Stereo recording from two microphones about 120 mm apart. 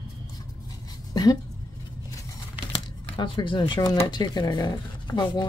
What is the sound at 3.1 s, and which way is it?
Speech, 40° left (ahead or behind).